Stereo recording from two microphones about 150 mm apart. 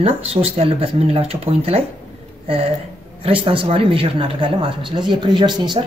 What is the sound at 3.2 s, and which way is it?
Speech, 35° right (ahead or behind).